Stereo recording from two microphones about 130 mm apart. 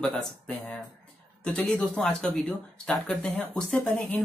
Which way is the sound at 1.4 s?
5° left (ahead or behind).